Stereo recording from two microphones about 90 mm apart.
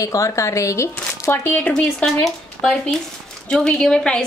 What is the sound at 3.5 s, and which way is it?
Speech, 10° left (ahead or behind).